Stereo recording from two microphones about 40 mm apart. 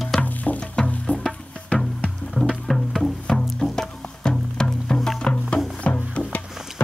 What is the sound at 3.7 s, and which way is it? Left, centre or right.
Music, centre.